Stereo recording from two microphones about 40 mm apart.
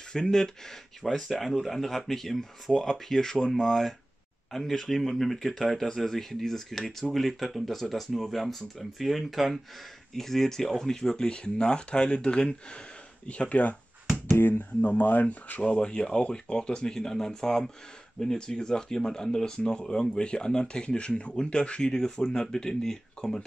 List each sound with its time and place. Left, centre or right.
0.1 s speech: centre
1.0 s speech: centre
2.7 s speech: centre
4.5 s speech: centre; by 12.5 s left
13.3 s speech: left
14.3 s speech: left
15.6 s speech: left